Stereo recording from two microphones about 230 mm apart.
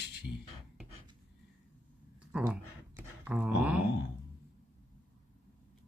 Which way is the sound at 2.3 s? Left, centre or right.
Centre.